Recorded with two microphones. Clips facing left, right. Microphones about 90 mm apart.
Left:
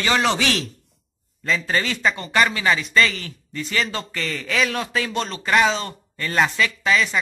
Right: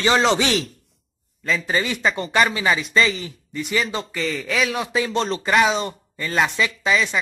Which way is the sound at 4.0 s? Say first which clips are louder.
Right 3 dB; centre (ahead or behind).